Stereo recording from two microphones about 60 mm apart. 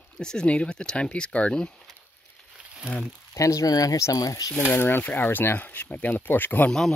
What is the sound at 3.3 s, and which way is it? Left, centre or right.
Speech, left.